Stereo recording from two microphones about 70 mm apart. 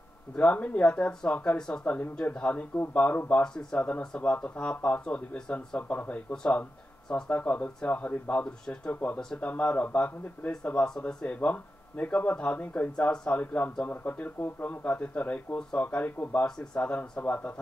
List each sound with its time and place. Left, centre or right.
0.4 s speech: centre
16.4 s speech: centre